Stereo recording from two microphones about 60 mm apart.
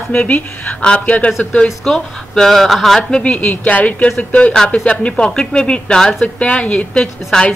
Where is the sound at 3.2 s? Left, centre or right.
Left.